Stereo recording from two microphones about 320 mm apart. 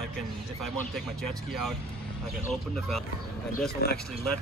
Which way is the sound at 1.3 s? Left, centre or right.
Right.